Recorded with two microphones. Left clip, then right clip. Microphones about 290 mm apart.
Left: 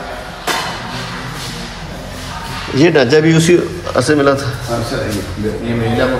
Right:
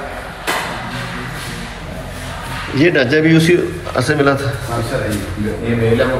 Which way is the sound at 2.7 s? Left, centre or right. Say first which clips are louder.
Left 3 dB; centre.